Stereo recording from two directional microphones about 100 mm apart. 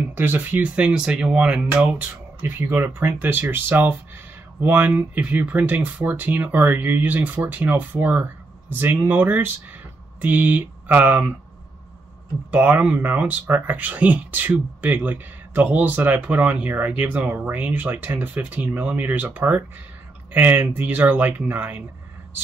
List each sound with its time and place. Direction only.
0.1 s speech: 20° right (ahead or behind)
12.4 s speech: 20° right (ahead or behind)